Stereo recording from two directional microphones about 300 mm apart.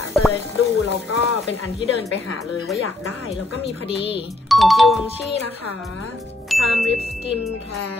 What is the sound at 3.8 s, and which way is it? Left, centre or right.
Speech, centre.